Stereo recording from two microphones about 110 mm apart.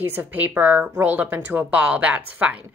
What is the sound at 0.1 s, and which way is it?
A woman's voice, 15° right (ahead or behind).